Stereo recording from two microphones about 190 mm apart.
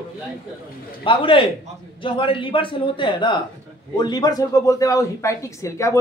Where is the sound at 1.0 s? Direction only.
25° left (ahead or behind).